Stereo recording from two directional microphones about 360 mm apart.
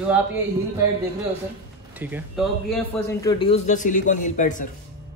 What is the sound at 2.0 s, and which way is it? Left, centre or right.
Speech, centre.